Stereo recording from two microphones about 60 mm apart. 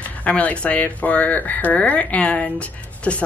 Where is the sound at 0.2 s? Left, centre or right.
Left.